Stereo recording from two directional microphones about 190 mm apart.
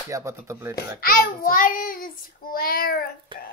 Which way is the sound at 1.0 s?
50° left (ahead or behind).